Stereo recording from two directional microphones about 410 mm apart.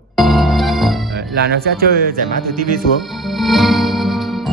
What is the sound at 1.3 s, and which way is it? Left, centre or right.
Speech, right.